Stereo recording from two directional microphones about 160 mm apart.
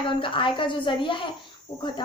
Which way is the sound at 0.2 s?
30° left (ahead or behind).